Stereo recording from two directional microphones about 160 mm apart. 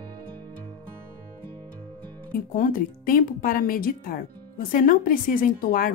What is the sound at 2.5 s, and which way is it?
Speech, 60° left (ahead or behind).